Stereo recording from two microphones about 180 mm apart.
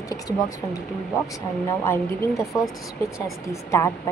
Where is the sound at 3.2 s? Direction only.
15° left (ahead or behind).